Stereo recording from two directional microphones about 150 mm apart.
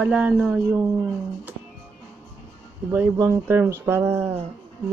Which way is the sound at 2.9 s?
15° right (ahead or behind).